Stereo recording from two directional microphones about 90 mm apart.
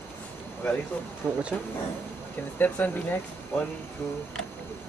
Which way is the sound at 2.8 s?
20° left (ahead or behind).